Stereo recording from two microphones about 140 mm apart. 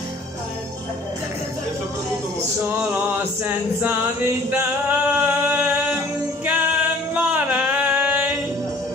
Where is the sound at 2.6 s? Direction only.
15° right (ahead or behind).